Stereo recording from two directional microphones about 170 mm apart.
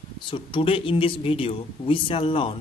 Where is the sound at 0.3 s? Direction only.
30° left (ahead or behind).